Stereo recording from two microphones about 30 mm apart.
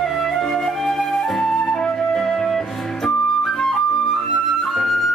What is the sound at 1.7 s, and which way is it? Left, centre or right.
Flute, left.